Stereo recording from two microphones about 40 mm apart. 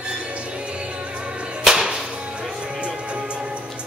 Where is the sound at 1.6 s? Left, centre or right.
Centre.